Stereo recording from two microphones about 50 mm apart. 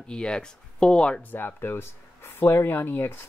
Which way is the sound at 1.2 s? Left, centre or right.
Left.